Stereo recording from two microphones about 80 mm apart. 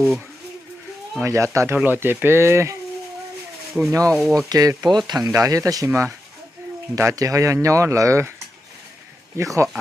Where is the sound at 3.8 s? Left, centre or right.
Centre.